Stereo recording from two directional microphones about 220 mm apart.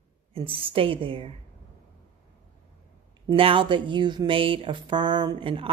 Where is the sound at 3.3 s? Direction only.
25° right (ahead or behind).